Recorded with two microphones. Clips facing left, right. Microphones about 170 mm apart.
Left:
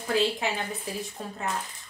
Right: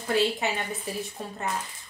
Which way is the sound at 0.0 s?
Centre (ahead or behind).